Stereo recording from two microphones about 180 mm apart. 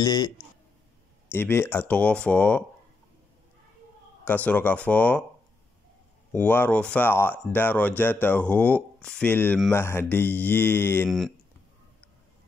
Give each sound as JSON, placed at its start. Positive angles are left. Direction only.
{"t": 0.0, "sound": "speech", "side_deg": 20}
{"t": 1.3, "sound": "speech", "side_deg": 10}
{"t": 4.2, "sound": "speech", "side_deg": 10}
{"t": 6.3, "sound": "speech", "side_deg": 10}
{"t": 11.1, "sound": "speech", "side_deg": 0}